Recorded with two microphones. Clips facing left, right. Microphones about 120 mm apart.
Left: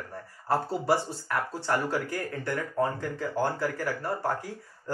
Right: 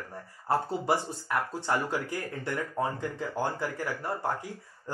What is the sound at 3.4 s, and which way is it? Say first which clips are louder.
Speech: left 3 dB; 20° right (ahead or behind).